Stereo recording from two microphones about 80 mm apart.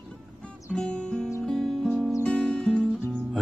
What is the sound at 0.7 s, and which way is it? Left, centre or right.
Music, centre.